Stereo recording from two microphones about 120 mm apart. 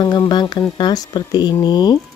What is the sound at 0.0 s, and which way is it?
Speech, 35° left (ahead or behind).